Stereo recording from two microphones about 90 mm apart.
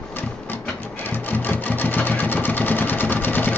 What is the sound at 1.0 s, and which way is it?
Sewing machine, 20° left (ahead or behind).